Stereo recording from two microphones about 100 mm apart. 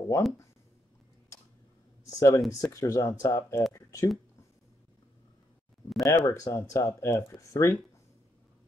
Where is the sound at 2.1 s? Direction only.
30° left (ahead or behind).